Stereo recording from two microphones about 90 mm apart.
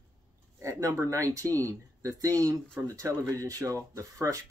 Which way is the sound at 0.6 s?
35° right (ahead or behind).